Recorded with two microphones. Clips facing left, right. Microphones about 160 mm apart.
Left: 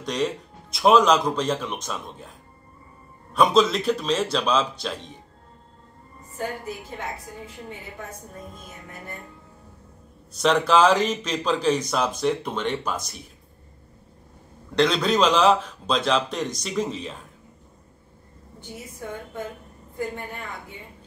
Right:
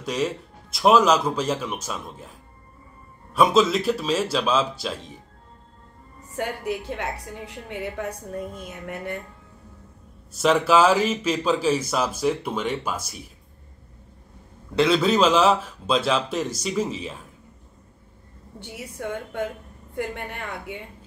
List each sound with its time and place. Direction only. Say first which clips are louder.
0.0 s speech: even; 5° right (ahead or behind)
3.3 s speech: even; 5° right (ahead or behind)
6.3 s a woman's voice: right 3 dB; 75° right (ahead or behind)
10.3 s speech: right 1 dB; 5° right (ahead or behind)
14.8 s speech: right 1 dB; 5° right (ahead or behind)
18.6 s a woman's voice: right 4 dB; 75° right (ahead or behind)